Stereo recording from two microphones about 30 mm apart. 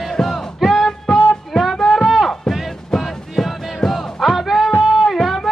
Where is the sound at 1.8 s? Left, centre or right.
Centre.